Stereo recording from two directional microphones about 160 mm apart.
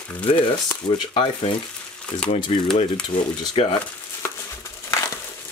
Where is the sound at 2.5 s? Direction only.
40° left (ahead or behind).